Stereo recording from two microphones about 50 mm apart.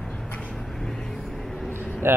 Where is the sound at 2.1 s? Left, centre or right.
Right.